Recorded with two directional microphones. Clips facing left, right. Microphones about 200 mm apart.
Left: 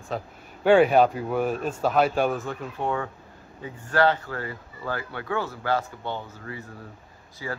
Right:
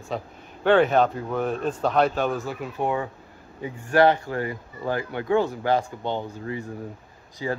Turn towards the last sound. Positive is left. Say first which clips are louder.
# right 5 dB
turn(degrees=-20)  # may be behind; listen again after turning